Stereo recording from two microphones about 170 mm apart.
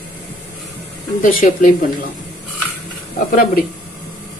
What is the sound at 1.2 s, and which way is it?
Speech, 55° left (ahead or behind).